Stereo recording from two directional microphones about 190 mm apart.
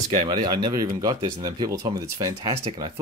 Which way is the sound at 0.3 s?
25° right (ahead or behind).